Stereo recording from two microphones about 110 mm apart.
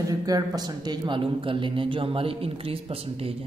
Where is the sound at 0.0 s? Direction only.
35° right (ahead or behind).